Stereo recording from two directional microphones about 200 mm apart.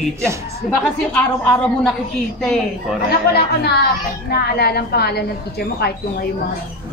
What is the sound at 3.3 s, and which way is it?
Speech, 55° left (ahead or behind).